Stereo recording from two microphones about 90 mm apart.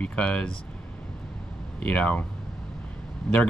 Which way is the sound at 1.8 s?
15° left (ahead or behind).